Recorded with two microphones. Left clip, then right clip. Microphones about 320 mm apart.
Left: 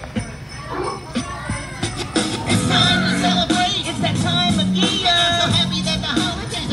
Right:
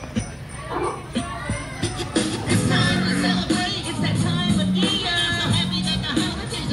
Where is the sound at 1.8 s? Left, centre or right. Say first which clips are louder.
Left 2 dB; centre.